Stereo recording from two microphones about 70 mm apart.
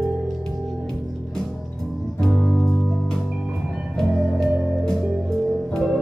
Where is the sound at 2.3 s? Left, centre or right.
Centre.